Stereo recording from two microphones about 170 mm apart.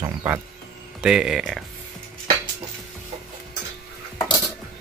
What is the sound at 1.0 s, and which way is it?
Speech, 5° right (ahead or behind).